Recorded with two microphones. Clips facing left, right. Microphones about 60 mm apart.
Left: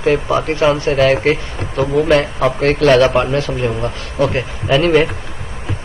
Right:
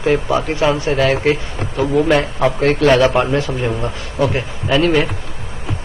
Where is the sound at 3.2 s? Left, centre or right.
Centre.